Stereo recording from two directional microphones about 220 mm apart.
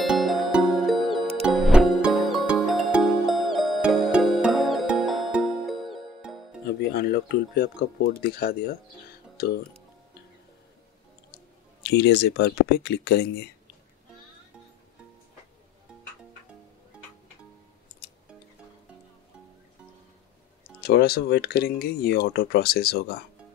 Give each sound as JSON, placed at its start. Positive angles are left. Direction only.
{"t": 0.0, "sound": "music", "side_deg": 0}
{"t": 6.9, "sound": "a sound", "side_deg": 45}
{"t": 8.1, "sound": "speech", "side_deg": 45}
{"t": 11.8, "sound": "speech", "side_deg": 50}
{"t": 20.8, "sound": "speech", "side_deg": 45}